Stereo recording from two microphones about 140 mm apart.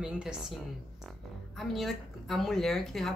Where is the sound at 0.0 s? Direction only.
5° right (ahead or behind).